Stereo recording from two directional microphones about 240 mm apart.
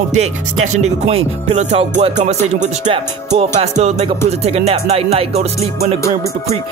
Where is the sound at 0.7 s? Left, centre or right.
Right.